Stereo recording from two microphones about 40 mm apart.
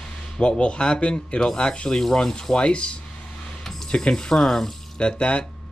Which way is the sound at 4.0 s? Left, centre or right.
Centre.